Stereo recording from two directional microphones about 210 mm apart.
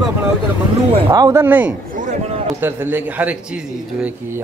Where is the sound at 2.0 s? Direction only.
35° right (ahead or behind).